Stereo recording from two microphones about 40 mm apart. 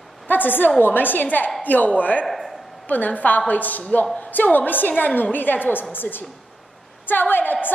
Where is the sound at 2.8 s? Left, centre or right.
Left.